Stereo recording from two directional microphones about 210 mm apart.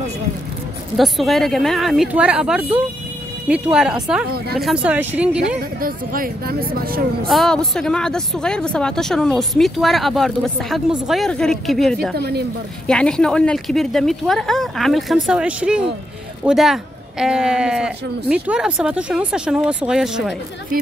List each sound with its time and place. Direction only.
0.9 s speech: centre (ahead or behind)
5.8 s speech: 45° right (ahead or behind)
7.2 s speech: centre (ahead or behind)